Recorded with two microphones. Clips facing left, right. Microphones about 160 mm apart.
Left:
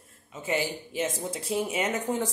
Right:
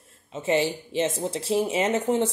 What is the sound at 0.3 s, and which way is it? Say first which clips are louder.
Speech: right 6 dB; 25° right (ahead or behind).